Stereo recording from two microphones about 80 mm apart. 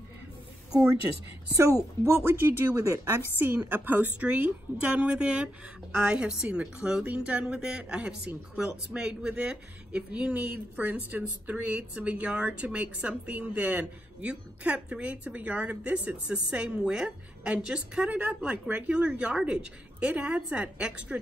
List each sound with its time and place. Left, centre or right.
2.0 s speech: right; by 21.2 s centre